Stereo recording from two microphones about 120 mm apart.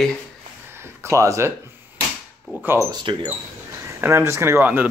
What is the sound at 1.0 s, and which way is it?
Speech, 25° right (ahead or behind).